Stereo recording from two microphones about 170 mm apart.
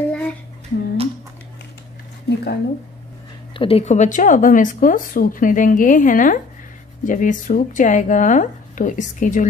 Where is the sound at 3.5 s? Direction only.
35° left (ahead or behind).